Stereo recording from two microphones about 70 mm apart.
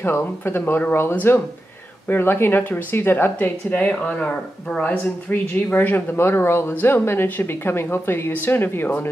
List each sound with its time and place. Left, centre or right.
0.0 s speech: left